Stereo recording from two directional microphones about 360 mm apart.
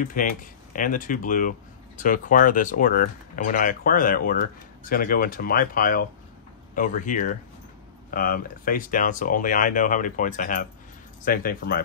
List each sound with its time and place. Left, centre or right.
0.0 s speech: left